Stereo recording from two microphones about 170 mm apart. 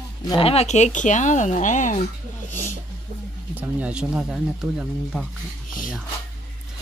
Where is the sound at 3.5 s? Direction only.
10° right (ahead or behind).